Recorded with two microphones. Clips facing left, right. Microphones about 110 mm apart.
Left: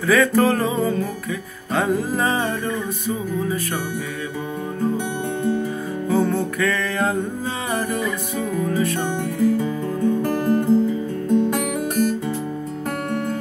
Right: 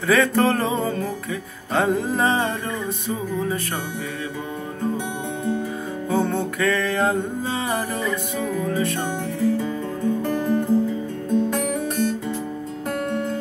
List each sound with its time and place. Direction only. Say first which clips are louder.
0.1 s music: left 2 dB; 25° right (ahead or behind)
6.0 s music: left 2 dB; 25° right (ahead or behind)